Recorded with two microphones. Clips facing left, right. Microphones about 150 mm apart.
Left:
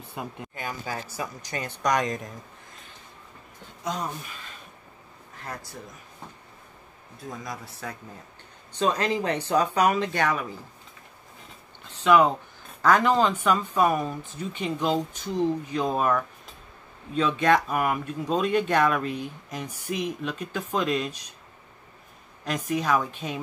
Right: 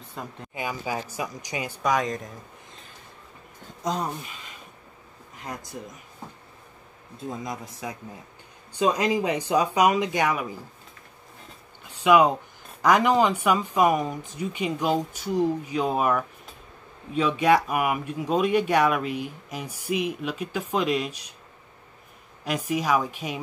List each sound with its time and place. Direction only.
0.1 s speech: 10° left (ahead or behind)
0.6 s speech: 10° right (ahead or behind)
3.8 s speech: 30° right (ahead or behind)
5.3 s speech: 15° right (ahead or behind)
7.2 s speech: 20° right (ahead or behind)
11.8 s a sound: 10° right (ahead or behind)
12.8 s speech: 15° right (ahead or behind)
22.4 s speech: 10° right (ahead or behind)